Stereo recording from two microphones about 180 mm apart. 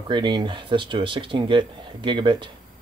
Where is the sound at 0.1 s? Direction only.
25° right (ahead or behind).